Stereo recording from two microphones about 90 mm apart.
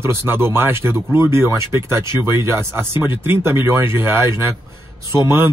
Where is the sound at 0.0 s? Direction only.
30° right (ahead or behind).